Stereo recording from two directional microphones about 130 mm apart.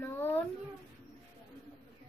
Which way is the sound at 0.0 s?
15° left (ahead or behind).